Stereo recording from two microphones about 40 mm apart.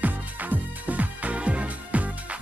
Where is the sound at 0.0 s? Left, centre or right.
Right.